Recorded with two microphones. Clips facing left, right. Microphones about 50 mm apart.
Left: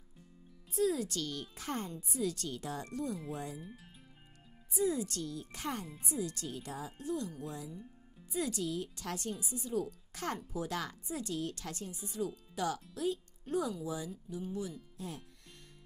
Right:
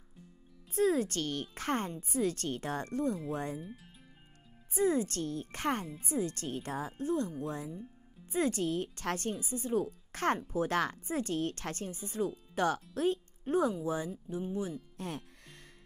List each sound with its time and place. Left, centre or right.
0.7 s speech: right
3.6 s speech: centre
4.7 s speech: right
15.0 s speech: right